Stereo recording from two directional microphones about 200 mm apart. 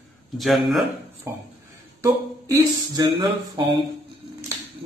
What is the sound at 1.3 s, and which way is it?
Speech, 10° right (ahead or behind).